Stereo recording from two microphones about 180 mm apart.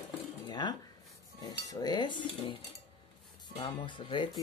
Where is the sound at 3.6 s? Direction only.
25° left (ahead or behind).